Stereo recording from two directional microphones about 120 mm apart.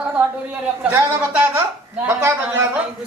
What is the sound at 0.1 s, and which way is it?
A woman's voice, 15° right (ahead or behind).